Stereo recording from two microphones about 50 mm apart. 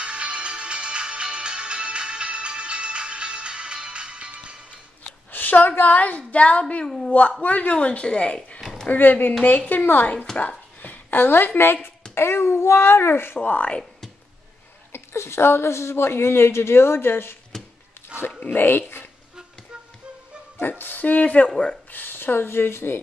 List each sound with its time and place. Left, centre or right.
0.0 s music: right
5.3 s a woman's voice: left
8.5 s a sound: centre
8.8 s a woman's voice: left
13.5 s a woman's voice: left
14.9 s a woman's voice: left
18.1 s a sound: right
18.5 s a sound: left
20.5 s speech: left
21.9 s speech: left